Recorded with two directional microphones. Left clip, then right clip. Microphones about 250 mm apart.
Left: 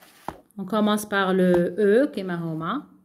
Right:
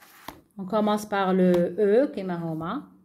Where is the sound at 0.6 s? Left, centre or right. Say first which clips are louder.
Left 1 dB; left.